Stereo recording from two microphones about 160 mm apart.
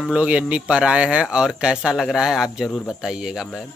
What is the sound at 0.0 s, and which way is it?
Speech, 5° right (ahead or behind).